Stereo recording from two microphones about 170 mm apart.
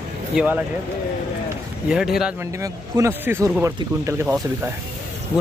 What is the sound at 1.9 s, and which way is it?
Speech, 5° right (ahead or behind).